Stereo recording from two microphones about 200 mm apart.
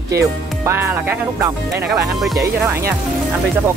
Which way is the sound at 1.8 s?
Centre (ahead or behind).